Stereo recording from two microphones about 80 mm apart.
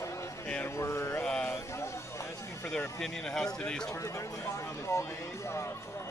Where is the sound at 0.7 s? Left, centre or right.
Left.